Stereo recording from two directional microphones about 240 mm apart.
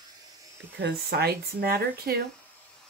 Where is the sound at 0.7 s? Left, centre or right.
Right.